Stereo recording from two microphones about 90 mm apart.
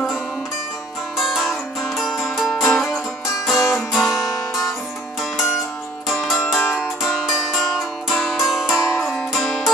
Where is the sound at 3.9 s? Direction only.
Centre (ahead or behind).